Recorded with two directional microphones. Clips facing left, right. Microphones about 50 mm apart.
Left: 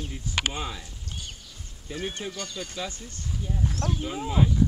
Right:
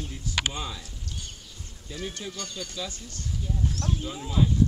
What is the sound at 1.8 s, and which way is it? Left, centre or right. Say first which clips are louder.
Speech: left 3 dB; left.